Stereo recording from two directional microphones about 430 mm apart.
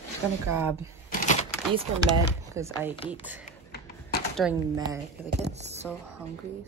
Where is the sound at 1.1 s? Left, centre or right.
Centre.